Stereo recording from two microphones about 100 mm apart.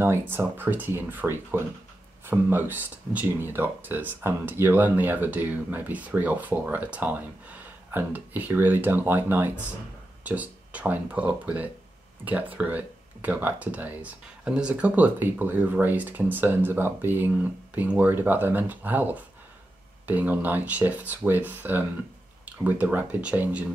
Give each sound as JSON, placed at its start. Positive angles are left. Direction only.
{"t": 0.0, "sound": "speech", "side_deg": -25}